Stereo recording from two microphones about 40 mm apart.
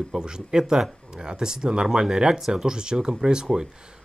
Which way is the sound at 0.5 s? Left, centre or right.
Right.